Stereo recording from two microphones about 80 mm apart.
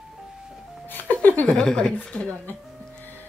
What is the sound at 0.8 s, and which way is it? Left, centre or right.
Music, left.